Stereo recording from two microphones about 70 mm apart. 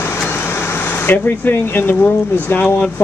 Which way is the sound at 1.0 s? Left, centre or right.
Left.